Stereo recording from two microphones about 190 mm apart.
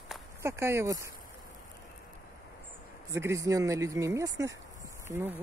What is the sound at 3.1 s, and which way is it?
Speech, 15° right (ahead or behind).